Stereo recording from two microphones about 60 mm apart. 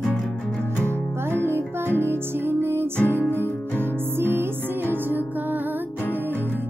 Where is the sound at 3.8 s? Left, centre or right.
Right.